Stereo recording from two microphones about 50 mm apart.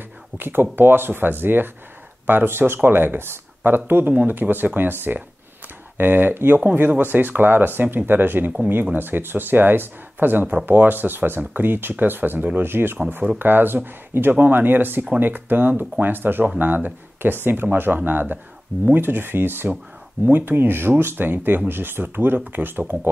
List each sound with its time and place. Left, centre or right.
0.4 s speech: right